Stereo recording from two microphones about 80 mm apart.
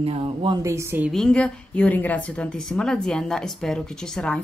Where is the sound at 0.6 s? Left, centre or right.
Right.